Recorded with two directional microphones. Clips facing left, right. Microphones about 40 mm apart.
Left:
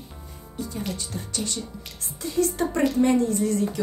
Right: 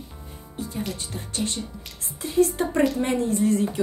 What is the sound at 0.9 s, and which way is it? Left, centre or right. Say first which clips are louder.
A woman's voice: even; right.